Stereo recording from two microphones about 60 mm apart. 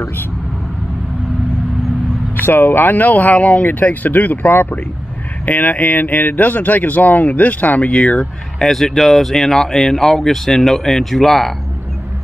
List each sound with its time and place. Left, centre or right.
2.3 s speech: left; by 8.3 s centre
8.5 s speech: centre